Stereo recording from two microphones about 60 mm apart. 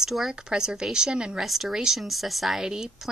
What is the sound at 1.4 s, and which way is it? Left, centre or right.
A woman's voice, centre.